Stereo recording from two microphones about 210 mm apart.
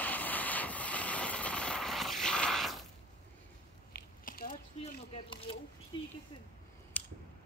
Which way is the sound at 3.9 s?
45° left (ahead or behind).